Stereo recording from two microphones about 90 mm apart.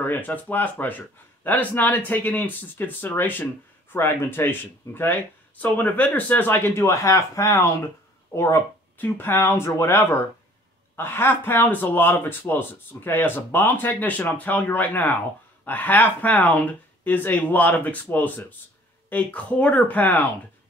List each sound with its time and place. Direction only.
0.0 s speech: 20° left (ahead or behind)
6.8 s speech: 35° left (ahead or behind); by 20.2 s 20° left (ahead or behind)